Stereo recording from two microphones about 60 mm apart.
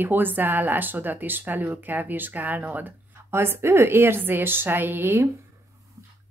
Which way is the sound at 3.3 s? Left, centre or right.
Right.